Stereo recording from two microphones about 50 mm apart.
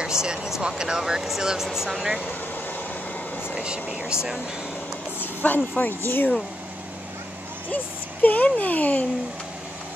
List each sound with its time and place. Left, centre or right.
0.0 s speech: centre
3.5 s speech: right
5.2 s a sound: left
5.8 s speech: left
7.7 s speech: left